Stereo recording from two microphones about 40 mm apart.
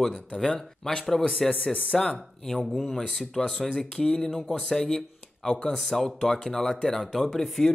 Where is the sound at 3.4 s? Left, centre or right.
Centre.